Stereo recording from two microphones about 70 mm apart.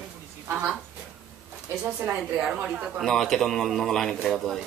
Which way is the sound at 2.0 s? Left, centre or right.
Centre.